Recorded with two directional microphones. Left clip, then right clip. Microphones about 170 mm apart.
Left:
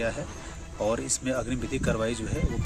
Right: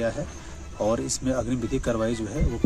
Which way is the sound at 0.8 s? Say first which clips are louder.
Right 2 dB; 35° left (ahead or behind).